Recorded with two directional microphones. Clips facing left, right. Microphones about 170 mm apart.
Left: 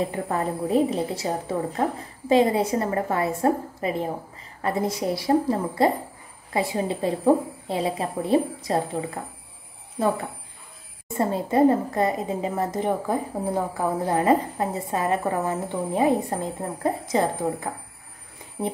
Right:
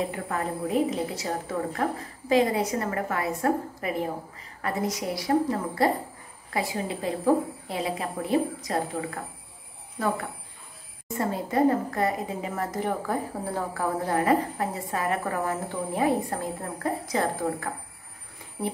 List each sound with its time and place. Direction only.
0.1 s a woman's voice: 30° left (ahead or behind)
11.1 s a woman's voice: 25° left (ahead or behind)